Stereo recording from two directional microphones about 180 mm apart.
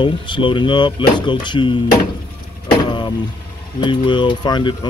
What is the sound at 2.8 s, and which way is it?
Vehicle, 25° left (ahead or behind).